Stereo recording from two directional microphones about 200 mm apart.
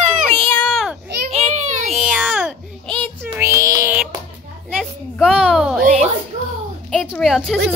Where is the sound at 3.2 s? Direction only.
15° right (ahead or behind).